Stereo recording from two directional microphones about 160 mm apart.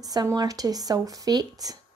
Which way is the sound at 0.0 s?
25° right (ahead or behind).